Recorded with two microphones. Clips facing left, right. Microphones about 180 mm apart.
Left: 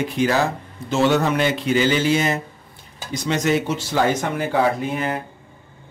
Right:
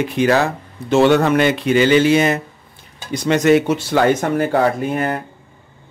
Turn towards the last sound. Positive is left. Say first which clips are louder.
# right 3 dB
turn(degrees=-55)  # may be behind; listen again after turning